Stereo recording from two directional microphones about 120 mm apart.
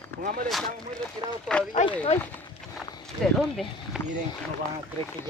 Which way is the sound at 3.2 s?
5° left (ahead or behind).